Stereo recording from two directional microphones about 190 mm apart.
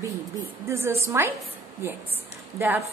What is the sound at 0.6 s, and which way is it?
Speech, 15° right (ahead or behind).